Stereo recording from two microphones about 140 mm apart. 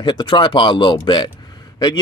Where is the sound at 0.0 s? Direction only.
35° left (ahead or behind).